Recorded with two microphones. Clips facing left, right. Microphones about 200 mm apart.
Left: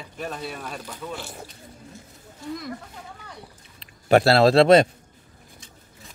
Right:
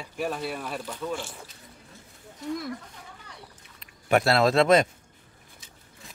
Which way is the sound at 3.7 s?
35° left (ahead or behind).